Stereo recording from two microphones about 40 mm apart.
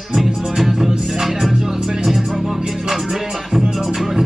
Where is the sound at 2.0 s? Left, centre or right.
Centre.